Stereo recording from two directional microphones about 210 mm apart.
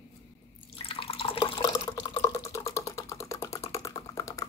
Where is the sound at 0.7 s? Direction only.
25° left (ahead or behind).